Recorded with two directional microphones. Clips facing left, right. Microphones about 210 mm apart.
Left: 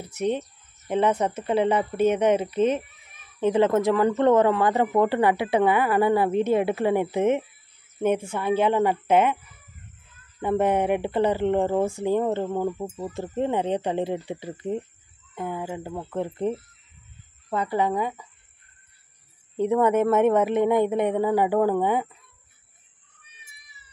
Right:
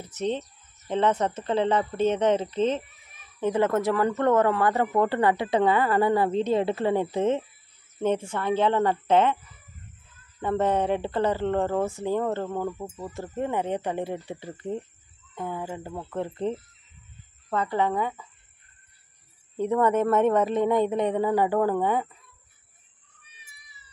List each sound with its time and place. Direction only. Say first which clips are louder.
0.0 s speech: left 3 dB; 10° left (ahead or behind)
10.4 s speech: left 2 dB; 15° left (ahead or behind)
19.7 s speech: left 2 dB; 10° left (ahead or behind)